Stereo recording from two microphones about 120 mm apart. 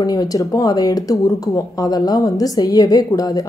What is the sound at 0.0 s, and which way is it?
A woman's voice, 30° left (ahead or behind).